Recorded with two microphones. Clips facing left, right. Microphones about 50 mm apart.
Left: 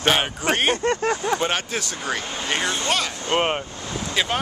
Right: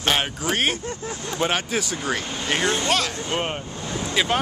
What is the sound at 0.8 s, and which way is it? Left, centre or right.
Speech, left.